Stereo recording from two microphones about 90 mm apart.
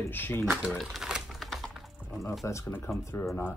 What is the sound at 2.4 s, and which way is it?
Speech, 35° left (ahead or behind).